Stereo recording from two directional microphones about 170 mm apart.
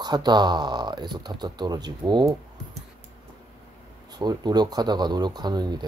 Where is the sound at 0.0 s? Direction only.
25° right (ahead or behind).